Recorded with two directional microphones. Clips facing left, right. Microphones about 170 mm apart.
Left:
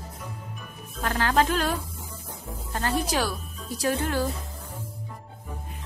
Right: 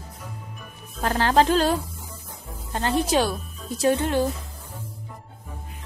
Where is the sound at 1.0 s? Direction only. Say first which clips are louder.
Right 4 dB; 30° right (ahead or behind).